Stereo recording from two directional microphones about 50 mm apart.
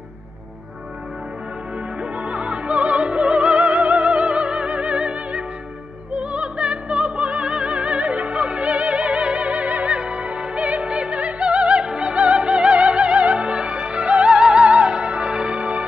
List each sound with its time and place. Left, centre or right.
2.1 s opera: right
6.1 s music: right
9.9 s opera: right